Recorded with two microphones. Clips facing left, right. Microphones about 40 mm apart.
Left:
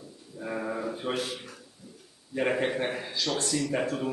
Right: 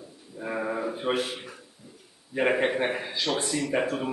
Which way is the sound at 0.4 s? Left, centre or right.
Centre.